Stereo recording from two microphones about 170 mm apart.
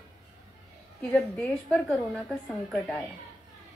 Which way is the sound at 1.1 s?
5° left (ahead or behind).